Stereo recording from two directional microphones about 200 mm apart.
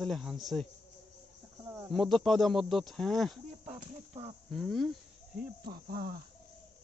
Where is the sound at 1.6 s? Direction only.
15° right (ahead or behind).